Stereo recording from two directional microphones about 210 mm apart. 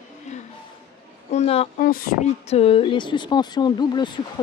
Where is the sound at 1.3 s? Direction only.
30° left (ahead or behind).